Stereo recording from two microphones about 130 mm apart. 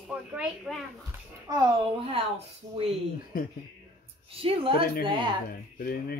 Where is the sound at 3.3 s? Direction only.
90° left.